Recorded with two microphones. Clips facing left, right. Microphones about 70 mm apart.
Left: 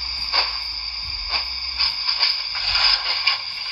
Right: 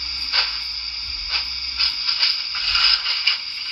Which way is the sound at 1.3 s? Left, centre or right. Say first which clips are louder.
Left 2 dB; left.